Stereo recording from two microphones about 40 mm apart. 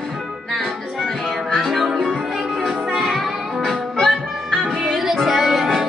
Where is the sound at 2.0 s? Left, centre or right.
Left.